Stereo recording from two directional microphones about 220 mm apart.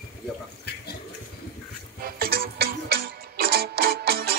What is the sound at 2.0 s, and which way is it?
Music, 45° right (ahead or behind).